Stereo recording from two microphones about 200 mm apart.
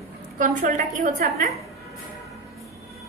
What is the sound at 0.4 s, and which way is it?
A woman's voice, 40° right (ahead or behind).